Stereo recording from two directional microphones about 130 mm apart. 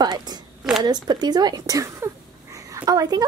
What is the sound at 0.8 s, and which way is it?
A woman's voice, 30° right (ahead or behind).